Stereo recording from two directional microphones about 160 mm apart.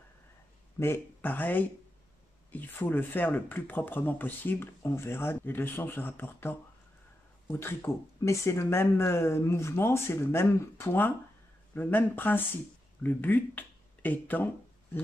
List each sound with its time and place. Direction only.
0.7 s speech: 15° left (ahead or behind)